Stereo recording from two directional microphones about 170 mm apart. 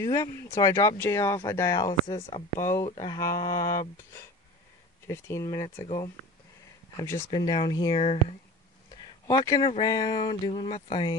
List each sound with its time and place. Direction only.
0.0 s speech: 20° left (ahead or behind)
2.3 s speech: 45° left (ahead or behind)
3.1 s speech: 20° left (ahead or behind)
5.0 s speech: 15° left (ahead or behind)
7.0 s speech: 15° left (ahead or behind)
7.2 s speech: 25° left (ahead or behind)
9.3 s speech: 25° left (ahead or behind)